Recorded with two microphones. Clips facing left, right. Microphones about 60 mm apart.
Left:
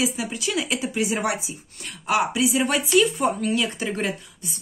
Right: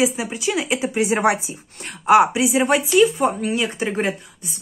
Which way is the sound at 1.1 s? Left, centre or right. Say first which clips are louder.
Right 7 dB; right.